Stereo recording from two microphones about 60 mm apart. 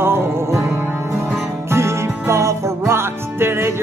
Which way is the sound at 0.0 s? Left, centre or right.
Right.